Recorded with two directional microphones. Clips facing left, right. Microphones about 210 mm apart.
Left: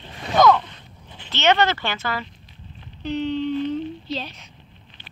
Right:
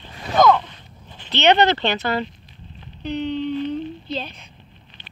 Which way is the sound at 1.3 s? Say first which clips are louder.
Right 3 dB; 20° right (ahead or behind).